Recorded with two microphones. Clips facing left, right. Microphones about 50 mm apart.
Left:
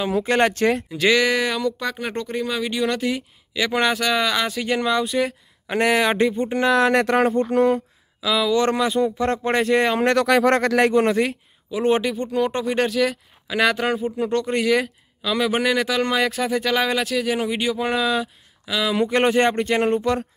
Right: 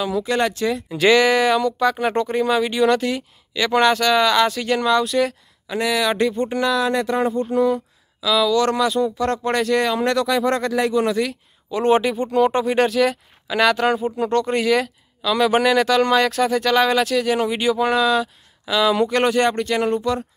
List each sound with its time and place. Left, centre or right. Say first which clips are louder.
0.1 s speech: left 1 dB; left
0.8 s speech: right 3 dB; centre
5.7 s speech: left 2 dB; left
6.2 s speech: even; centre
6.7 s speech: left 3 dB; left
7.2 s speech: left 1 dB; left
8.2 s speech: right 2 dB; left
10.1 s speech: left 2 dB; left
11.7 s speech: right 3 dB; centre
19.0 s speech: even; left